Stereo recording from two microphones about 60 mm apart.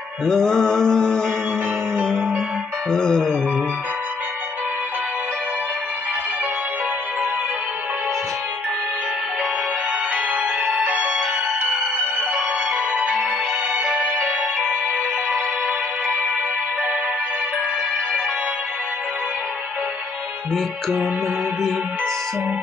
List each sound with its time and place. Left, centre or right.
0.2 s mantra: centre
2.9 s music: centre
10.1 s music: right